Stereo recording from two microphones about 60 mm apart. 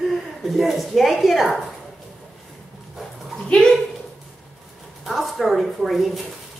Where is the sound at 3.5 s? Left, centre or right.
Centre.